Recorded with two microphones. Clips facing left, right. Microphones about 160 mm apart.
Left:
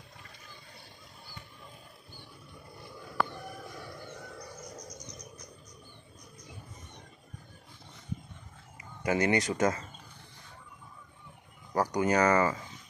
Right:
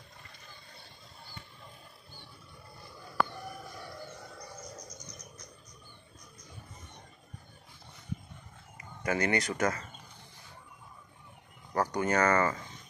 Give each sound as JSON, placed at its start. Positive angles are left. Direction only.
{"t": 9.0, "sound": "speech", "side_deg": 20}
{"t": 11.7, "sound": "speech", "side_deg": 15}